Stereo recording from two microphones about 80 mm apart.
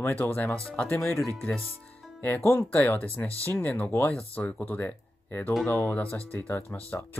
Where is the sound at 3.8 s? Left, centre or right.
Left.